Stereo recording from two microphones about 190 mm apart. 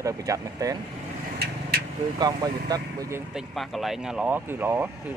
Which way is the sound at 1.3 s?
55° right (ahead or behind).